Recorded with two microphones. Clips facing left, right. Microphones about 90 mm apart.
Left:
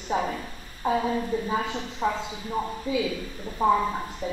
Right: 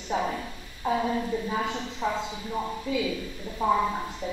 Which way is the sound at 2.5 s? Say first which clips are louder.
Left 2 dB; 10° left (ahead or behind).